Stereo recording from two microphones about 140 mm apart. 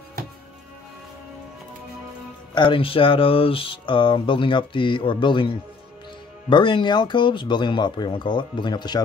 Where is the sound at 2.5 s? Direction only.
35° left (ahead or behind).